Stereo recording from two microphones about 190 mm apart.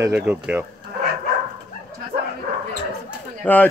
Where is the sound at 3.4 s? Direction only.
10° left (ahead or behind).